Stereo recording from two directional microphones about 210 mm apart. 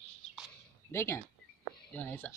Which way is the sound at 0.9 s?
10° left (ahead or behind).